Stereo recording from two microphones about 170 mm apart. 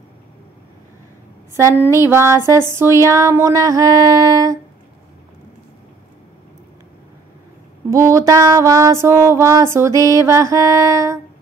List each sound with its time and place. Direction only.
1.5 s music: 15° right (ahead or behind)
2.7 s a sound: 15° right (ahead or behind)
7.9 s music: 20° right (ahead or behind)